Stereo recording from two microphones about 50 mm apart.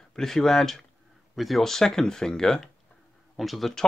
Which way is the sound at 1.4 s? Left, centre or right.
Centre.